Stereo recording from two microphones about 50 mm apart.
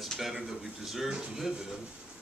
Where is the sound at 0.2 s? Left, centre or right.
Centre.